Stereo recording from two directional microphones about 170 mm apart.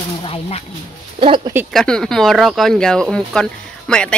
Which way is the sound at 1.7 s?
Centre (ahead or behind).